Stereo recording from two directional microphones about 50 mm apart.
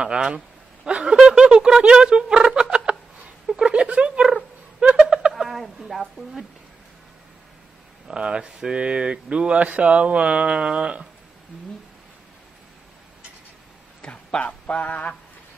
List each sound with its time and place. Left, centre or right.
0.0 s speech: centre
0.8 s a sound: centre
1.2 s speech: centre
4.7 s a sound: centre
5.3 s speech: centre
8.1 s speech: centre
14.0 s speech: left